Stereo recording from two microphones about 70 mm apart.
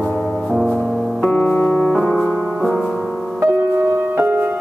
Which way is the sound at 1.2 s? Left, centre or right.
Left.